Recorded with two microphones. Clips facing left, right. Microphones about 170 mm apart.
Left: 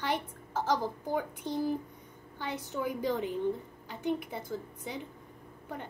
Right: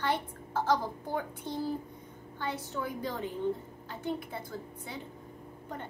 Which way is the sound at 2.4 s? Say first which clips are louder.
Left 1 dB; 15° left (ahead or behind).